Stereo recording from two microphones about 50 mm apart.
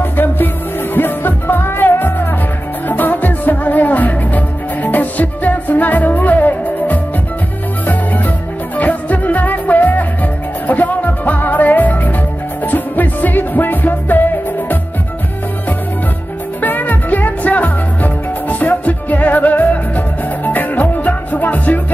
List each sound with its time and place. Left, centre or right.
0.0 s music: left
8.7 s music: left
16.6 s music: left